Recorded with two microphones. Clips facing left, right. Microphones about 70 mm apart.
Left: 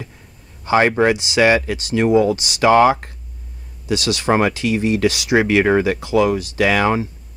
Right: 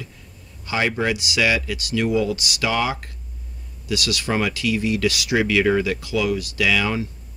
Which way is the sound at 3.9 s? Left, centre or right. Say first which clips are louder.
Left 6 dB; left.